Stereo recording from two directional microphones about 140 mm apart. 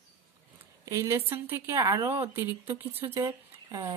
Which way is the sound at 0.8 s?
20° right (ahead or behind).